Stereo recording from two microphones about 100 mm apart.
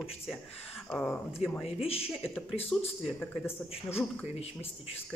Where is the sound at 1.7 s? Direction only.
80° left.